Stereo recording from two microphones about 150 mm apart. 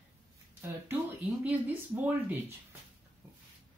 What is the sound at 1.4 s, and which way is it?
Speech, 10° right (ahead or behind).